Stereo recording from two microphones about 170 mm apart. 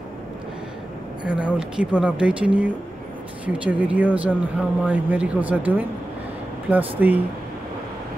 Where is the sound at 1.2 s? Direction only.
5° right (ahead or behind).